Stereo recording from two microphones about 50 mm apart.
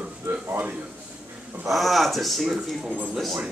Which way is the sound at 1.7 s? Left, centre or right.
Centre.